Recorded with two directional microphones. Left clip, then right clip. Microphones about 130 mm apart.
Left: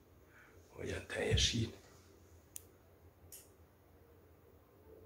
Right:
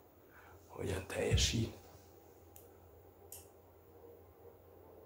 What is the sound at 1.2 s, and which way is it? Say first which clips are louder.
Speech: left 1 dB; centre (ahead or behind).